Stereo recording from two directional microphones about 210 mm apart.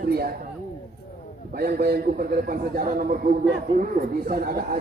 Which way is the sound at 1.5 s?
45° right (ahead or behind).